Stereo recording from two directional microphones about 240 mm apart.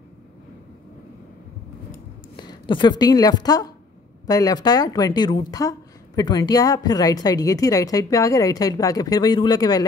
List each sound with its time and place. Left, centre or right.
2.3 s speech: centre